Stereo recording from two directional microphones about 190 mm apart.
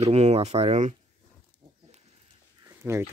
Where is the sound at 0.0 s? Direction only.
35° right (ahead or behind).